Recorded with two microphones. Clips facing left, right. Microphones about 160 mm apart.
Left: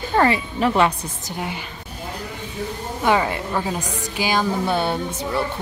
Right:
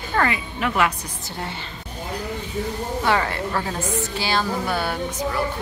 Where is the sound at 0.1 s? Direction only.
30° left (ahead or behind).